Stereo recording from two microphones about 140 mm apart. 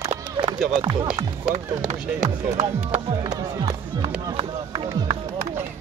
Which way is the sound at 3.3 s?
35° right (ahead or behind).